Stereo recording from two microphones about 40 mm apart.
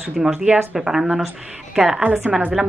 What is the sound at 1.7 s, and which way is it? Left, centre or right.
Speech, centre.